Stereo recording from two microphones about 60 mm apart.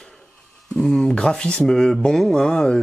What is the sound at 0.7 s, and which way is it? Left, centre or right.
Speech, centre.